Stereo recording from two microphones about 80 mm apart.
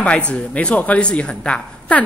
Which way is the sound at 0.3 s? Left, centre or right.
Centre.